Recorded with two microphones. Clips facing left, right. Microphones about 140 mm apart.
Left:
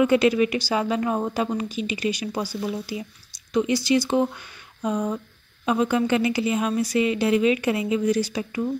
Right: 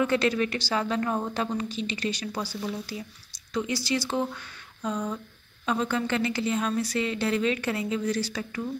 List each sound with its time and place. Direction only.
0.0 s a woman's voice: 10° left (ahead or behind)